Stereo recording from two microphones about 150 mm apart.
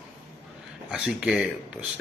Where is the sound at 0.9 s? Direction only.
5° right (ahead or behind).